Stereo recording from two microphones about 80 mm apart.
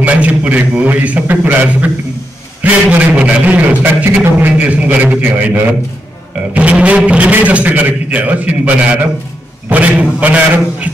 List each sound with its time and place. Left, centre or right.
0.0 s a man's voice: centre